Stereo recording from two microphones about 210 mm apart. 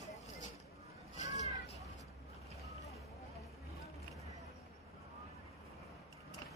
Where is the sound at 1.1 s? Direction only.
35° left (ahead or behind).